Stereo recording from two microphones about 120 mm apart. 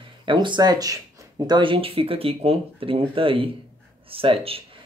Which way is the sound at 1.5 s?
45° right (ahead or behind).